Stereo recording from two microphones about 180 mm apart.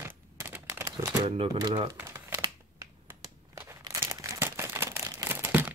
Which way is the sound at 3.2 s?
15° right (ahead or behind).